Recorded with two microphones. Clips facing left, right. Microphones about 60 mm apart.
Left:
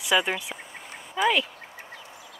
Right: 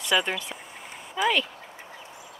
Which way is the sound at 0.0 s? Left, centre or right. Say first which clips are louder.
Left 1 dB; centre.